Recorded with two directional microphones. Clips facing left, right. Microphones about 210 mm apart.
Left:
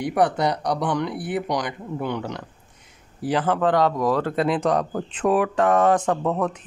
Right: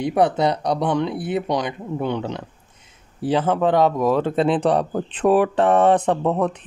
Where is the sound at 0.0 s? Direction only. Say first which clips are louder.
Right 3 dB; 25° right (ahead or behind).